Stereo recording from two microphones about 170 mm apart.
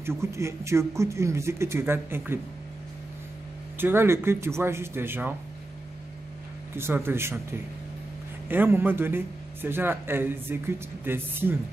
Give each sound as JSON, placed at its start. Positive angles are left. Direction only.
{"t": 0.0, "sound": "speech", "side_deg": -15}
{"t": 3.7, "sound": "speech", "side_deg": -15}
{"t": 6.8, "sound": "speech", "side_deg": -15}